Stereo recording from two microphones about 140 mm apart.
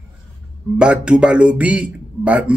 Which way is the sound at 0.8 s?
5° right (ahead or behind).